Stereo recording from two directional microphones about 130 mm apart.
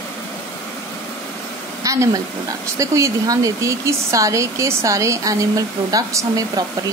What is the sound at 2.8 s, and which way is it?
Speech, 25° right (ahead or behind).